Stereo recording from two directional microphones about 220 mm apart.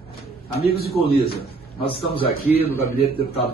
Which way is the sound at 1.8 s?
25° left (ahead or behind).